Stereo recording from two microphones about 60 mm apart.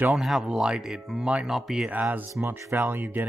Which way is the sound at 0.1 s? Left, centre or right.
Centre.